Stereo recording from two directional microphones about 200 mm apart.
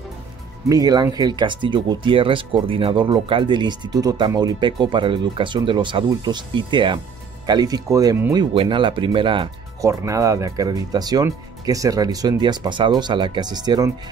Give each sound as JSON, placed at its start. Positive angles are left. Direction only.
{"t": 0.7, "sound": "speech", "side_deg": -20}